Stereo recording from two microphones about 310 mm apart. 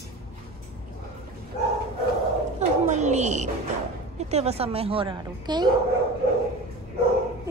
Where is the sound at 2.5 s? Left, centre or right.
Right.